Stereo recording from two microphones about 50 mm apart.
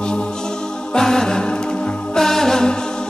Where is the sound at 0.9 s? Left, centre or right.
Centre.